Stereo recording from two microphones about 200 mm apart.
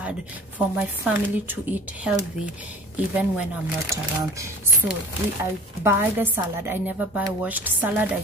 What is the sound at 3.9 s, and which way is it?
Speech, 15° right (ahead or behind).